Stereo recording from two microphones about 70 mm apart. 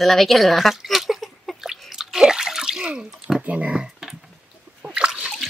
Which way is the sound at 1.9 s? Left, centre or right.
Centre.